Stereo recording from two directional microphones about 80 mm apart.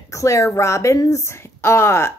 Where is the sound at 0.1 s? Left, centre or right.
Left.